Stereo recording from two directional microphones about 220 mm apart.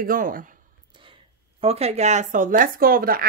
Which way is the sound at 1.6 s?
30° right (ahead or behind).